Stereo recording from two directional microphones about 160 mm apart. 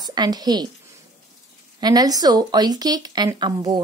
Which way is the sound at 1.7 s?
25° right (ahead or behind).